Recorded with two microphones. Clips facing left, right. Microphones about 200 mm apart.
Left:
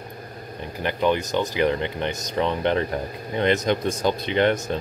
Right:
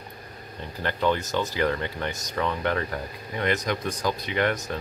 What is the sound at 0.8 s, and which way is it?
Speech, 15° left (ahead or behind).